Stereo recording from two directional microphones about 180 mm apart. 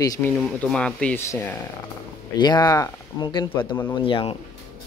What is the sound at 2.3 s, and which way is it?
Speech, 20° left (ahead or behind).